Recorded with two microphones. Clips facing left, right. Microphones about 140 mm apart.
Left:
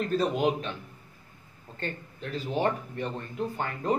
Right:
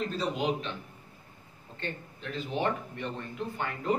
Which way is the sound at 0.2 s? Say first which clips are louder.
Left 4 dB; 50° left (ahead or behind).